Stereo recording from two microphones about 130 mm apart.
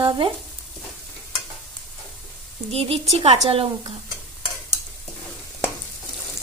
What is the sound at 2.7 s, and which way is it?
Speech, 50° right (ahead or behind).